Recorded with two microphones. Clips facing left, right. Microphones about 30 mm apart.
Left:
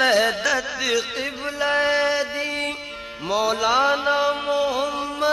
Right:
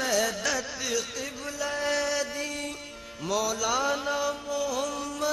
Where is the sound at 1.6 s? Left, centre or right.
Left.